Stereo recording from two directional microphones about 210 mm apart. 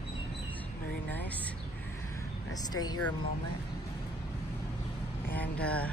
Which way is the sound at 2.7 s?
20° left (ahead or behind).